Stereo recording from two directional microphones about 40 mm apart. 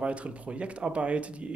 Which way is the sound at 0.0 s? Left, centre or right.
Right.